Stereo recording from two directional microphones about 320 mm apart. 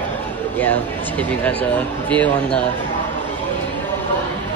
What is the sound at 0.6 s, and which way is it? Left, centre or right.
Speech, centre.